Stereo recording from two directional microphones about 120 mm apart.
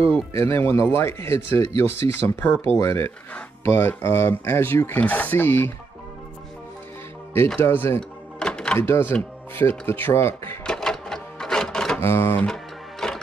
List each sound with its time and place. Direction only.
0.3 s speech: 20° left (ahead or behind)
7.6 s speech: 20° left (ahead or behind)
8.4 s music: 5° left (ahead or behind)
8.7 s speech: 20° left (ahead or behind)
10.6 s cash register: 5° left (ahead or behind)
12.0 s speech: 20° left (ahead or behind)
13.0 s music: 5° left (ahead or behind)